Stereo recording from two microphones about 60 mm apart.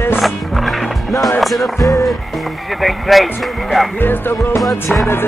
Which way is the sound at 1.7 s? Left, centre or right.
Left.